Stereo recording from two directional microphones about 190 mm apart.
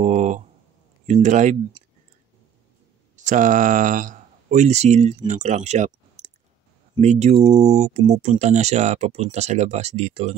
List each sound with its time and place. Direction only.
0.0 s a sound: 40° right (ahead or behind)
1.0 s speech: 40° right (ahead or behind)
3.2 s speech: 40° right (ahead or behind)